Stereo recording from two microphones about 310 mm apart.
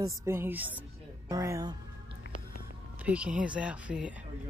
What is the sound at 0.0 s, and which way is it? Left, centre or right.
Speech, centre.